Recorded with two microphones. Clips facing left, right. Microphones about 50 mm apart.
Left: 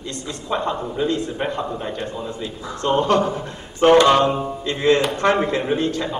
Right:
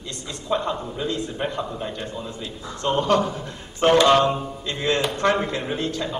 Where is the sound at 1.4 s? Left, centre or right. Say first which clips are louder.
Left 3 dB; centre.